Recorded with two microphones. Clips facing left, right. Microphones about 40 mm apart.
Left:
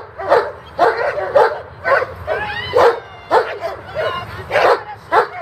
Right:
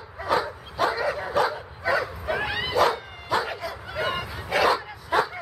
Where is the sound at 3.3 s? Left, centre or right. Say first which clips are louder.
Left 11 dB; centre.